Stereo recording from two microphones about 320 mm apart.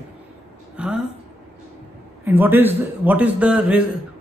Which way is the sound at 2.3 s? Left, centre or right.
Centre.